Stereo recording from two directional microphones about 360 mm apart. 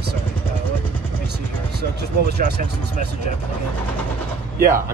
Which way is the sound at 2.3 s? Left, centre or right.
Right.